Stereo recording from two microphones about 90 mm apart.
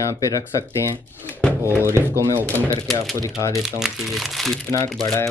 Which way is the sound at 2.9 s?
5° left (ahead or behind).